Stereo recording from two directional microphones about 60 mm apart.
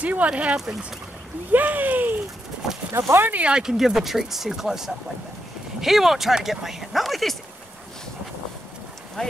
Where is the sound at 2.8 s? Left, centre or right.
Centre.